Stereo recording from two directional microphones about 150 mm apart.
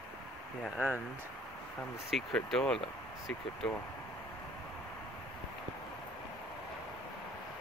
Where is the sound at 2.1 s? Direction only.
Centre (ahead or behind).